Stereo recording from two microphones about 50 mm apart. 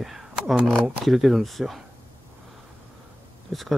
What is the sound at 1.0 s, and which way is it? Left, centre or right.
Speech, centre.